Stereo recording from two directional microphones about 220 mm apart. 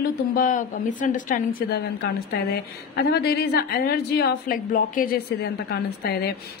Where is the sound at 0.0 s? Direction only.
40° left (ahead or behind).